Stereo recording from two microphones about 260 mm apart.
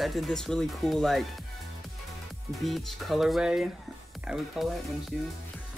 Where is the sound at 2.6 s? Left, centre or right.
Centre.